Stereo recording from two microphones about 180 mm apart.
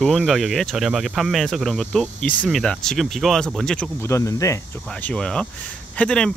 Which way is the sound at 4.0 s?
15° left (ahead or behind).